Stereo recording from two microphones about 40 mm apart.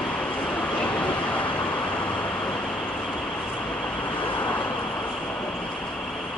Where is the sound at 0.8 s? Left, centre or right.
Left.